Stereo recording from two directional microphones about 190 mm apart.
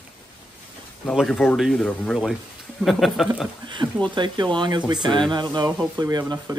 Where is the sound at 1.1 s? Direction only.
5° left (ahead or behind).